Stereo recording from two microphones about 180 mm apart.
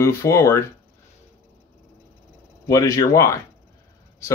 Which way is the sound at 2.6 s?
20° left (ahead or behind).